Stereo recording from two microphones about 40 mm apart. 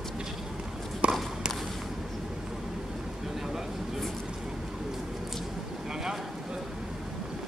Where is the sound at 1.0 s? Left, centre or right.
Right.